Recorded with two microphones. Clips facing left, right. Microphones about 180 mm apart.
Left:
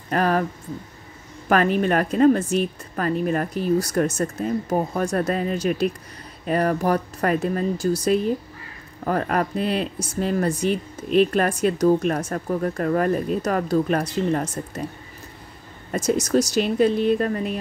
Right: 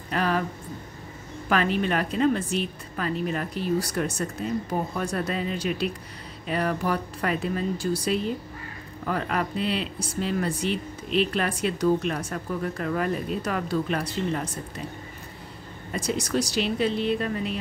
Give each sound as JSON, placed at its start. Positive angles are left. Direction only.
{"t": 0.1, "sound": "speech", "side_deg": 45}
{"t": 1.5, "sound": "speech", "side_deg": 45}
{"t": 15.9, "sound": "speech", "side_deg": 45}